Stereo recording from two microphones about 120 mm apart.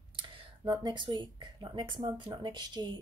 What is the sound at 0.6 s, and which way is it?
A woman's voice, 35° right (ahead or behind).